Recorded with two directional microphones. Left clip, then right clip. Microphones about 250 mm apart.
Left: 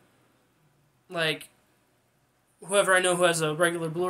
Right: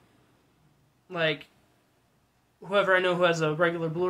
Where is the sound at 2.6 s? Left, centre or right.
Centre.